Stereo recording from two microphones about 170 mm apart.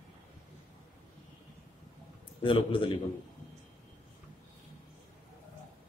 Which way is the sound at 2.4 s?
30° left (ahead or behind).